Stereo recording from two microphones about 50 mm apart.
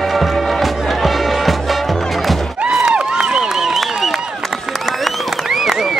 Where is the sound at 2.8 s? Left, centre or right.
Right; by 5.9 s centre.